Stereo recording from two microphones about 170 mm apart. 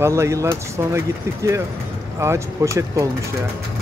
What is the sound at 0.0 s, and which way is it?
Speech, 15° right (ahead or behind).